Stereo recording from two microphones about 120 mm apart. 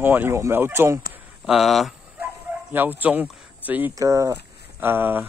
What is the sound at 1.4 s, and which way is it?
Speech, centre (ahead or behind).